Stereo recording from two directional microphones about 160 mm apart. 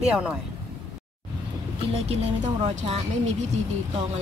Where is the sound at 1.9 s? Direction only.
40° right (ahead or behind).